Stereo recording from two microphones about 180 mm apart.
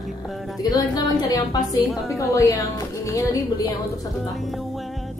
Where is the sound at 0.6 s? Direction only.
20° left (ahead or behind).